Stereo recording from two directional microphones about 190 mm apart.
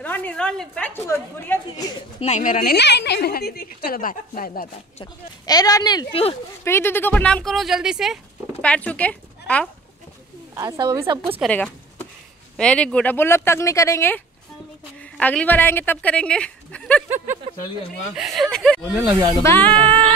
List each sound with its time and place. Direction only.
0.0 s speech: 10° left (ahead or behind)
2.0 s speech: 30° left (ahead or behind); by 4.6 s 50° left (ahead or behind)
5.5 s speech: 20° left (ahead or behind)
10.5 s speech: 20° right (ahead or behind)
11.4 s speech: 5° left (ahead or behind)
18.1 s speech: centre (ahead or behind)
19.4 s speech: 10° left (ahead or behind)
19.7 s speech: 25° right (ahead or behind)